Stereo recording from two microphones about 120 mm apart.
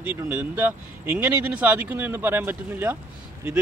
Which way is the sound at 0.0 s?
15° right (ahead or behind).